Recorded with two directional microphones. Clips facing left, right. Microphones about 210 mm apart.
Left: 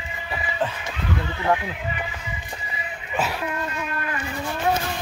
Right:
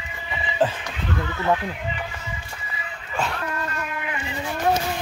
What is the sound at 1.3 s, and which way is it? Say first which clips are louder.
Speech: even; 15° left (ahead or behind).